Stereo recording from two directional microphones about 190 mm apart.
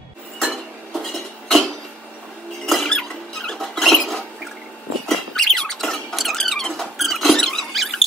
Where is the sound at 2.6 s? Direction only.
Centre (ahead or behind).